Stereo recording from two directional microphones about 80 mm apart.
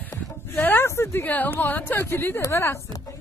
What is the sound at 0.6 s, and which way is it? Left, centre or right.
A woman's voice, left.